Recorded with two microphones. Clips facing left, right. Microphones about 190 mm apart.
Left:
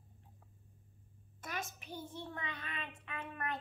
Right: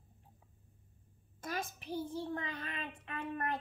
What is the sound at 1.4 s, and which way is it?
A child's voice, 35° right (ahead or behind).